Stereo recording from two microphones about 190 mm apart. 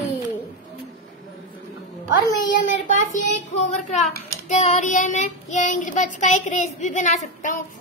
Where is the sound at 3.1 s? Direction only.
40° left (ahead or behind).